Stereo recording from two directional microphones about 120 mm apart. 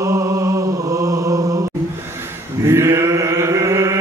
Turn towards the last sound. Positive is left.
turn(degrees=-25)  # may be behind; listen again after turning